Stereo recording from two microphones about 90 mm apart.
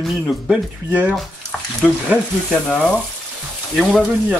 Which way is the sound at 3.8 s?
Centre (ahead or behind).